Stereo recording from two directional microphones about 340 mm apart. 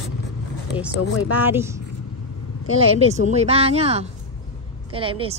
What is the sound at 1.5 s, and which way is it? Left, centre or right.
Speech, centre.